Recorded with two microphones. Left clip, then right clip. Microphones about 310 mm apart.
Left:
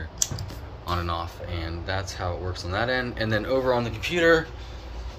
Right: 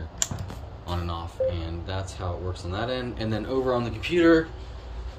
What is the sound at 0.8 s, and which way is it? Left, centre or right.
Speech, centre.